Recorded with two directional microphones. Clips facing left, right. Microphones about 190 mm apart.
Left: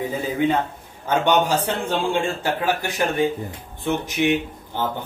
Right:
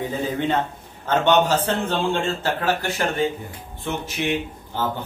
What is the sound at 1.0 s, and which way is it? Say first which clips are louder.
A man's voice: right 1 dB; 10° left (ahead or behind).